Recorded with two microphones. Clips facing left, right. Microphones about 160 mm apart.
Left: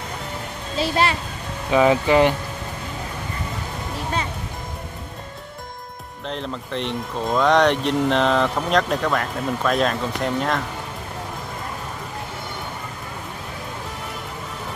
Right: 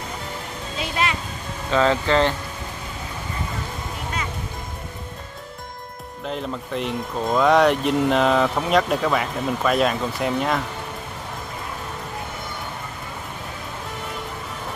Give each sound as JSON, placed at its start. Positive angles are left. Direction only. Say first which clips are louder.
{"t": 0.7, "sound": "speech", "louder": "left 5 dB", "side_deg": 35}
{"t": 1.7, "sound": "speech", "louder": "left 3 dB", "side_deg": 15}
{"t": 6.2, "sound": "speech", "louder": "right 1 dB", "side_deg": -5}